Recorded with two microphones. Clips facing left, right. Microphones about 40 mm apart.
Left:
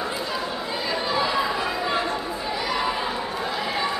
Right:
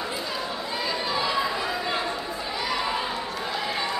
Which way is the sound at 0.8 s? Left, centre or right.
Centre.